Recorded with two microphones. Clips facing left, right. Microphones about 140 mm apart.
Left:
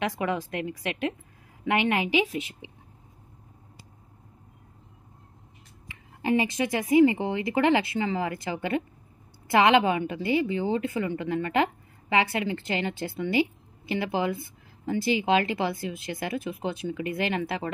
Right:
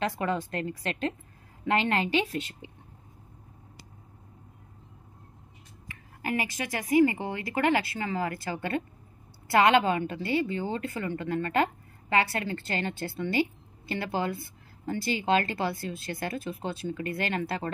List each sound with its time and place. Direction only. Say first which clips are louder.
0.1 s a woman's voice: left 1 dB; 10° left (ahead or behind)
5.9 s a woman's voice: left 7 dB; 20° left (ahead or behind)